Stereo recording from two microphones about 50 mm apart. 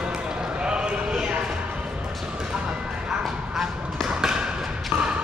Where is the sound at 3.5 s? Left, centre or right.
Centre.